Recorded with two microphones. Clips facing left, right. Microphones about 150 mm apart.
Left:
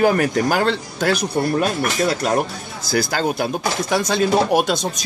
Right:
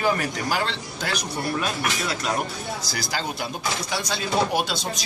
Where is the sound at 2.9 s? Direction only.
55° left (ahead or behind).